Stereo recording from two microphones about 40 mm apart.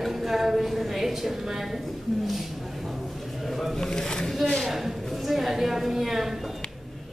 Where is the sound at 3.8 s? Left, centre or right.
Centre.